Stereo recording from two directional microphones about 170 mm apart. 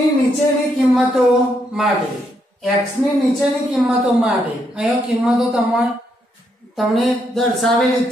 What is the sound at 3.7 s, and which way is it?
A woman's voice, 5° right (ahead or behind).